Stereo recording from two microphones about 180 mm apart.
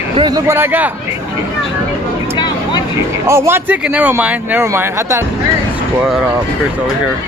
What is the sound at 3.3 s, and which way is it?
Speech, 15° right (ahead or behind).